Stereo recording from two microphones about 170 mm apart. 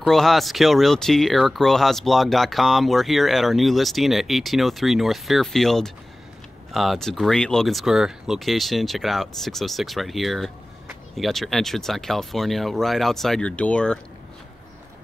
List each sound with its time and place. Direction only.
0.0 s speech: centre (ahead or behind)